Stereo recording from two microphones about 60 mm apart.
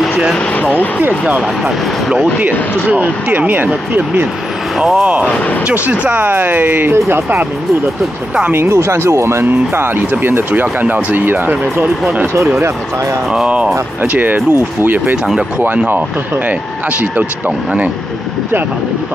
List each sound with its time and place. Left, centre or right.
2.5 s speech: left
2.9 s speech: right
4.7 s speech: centre
5.7 s speech: right
8.5 s speech: right
13.3 s speech: centre
14.0 s speech: right